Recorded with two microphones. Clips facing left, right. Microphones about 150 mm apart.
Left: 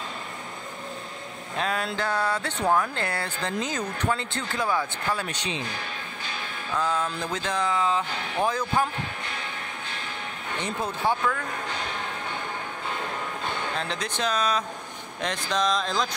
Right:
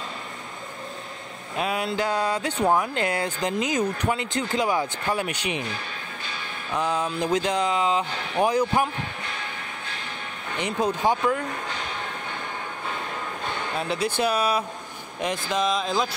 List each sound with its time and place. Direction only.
1.6 s speech: 10° right (ahead or behind)
6.7 s speech: 15° right (ahead or behind)
10.6 s speech: 15° right (ahead or behind)
13.7 s speech: 5° right (ahead or behind)